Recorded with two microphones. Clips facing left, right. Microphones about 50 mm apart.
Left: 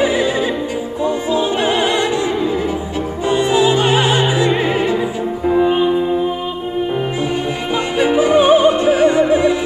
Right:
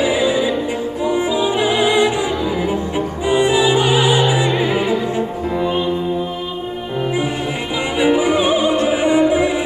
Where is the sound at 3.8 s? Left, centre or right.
Left.